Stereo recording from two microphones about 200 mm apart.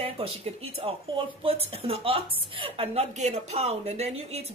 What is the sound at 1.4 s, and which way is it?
A woman's voice, 30° right (ahead or behind).